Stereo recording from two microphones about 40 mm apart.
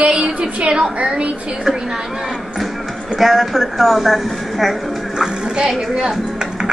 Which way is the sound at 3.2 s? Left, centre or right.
Centre.